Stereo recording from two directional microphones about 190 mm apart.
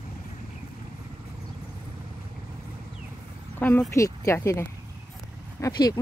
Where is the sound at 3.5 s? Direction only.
10° left (ahead or behind).